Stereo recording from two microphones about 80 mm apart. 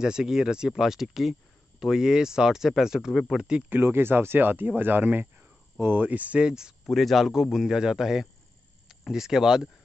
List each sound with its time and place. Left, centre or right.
0.0 s speech: centre
3.7 s speech: right; by 9.7 s centre